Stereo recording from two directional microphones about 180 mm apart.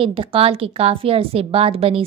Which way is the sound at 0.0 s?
30° right (ahead or behind).